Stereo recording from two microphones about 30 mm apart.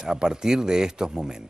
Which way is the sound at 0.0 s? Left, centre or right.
Right.